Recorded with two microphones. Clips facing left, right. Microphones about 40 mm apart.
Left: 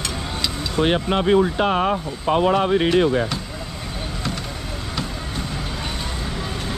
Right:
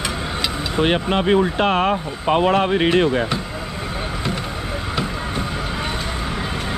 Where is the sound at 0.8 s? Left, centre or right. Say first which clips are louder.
Right 1 dB; right.